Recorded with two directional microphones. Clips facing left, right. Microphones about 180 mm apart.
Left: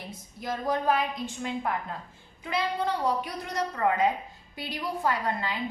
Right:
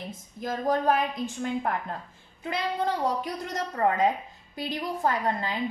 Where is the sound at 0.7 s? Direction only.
45° right (ahead or behind).